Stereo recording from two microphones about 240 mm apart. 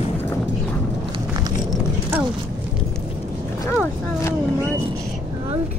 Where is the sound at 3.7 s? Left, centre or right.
Centre.